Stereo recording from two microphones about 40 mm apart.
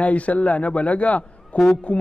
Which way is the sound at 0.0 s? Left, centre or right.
Left.